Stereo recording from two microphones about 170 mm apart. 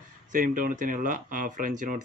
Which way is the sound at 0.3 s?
55° right (ahead or behind).